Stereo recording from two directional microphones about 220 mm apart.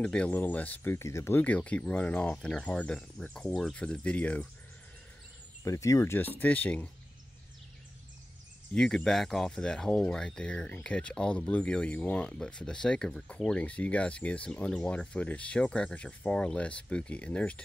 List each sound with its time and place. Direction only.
0.0 s speech: 5° left (ahead or behind)
5.6 s speech: 15° left (ahead or behind)
8.7 s speech: centre (ahead or behind)